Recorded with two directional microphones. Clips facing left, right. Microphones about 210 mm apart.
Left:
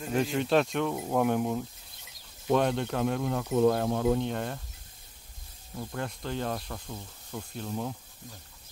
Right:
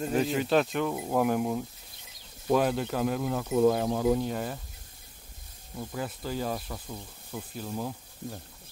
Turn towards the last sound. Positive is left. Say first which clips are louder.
# even
turn(degrees=-5)  # may be behind; listen again after turning